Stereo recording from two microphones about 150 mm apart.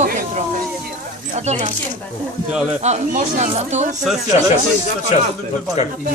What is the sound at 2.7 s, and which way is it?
Speech, 50° right (ahead or behind).